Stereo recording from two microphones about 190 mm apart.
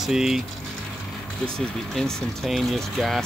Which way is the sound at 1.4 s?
5° left (ahead or behind).